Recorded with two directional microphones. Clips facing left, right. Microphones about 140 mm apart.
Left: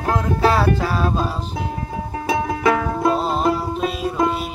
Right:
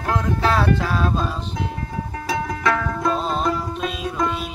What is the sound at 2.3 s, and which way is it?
Music, 25° left (ahead or behind).